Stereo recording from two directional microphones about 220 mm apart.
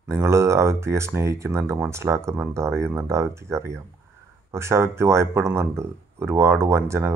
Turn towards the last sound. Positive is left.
turn(degrees=-10)  # may be behind; listen again after turning